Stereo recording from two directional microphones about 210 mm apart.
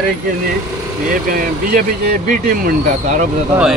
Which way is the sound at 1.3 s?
45° right (ahead or behind).